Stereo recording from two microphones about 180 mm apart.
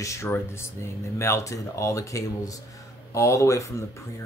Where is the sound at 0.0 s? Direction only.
15° left (ahead or behind).